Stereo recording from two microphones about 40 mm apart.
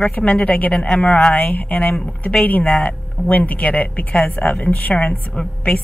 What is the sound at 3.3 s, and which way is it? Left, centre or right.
A woman's voice, left.